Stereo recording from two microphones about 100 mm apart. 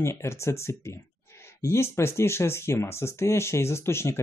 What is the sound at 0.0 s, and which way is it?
Speech, 25° left (ahead or behind).